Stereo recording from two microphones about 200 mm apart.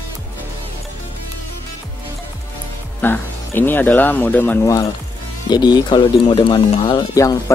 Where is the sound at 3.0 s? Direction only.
10° left (ahead or behind).